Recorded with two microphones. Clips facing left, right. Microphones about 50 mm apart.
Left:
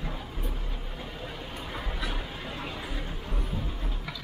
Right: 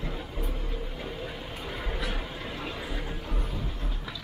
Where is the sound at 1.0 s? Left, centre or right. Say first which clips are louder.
Right 2 dB; centre.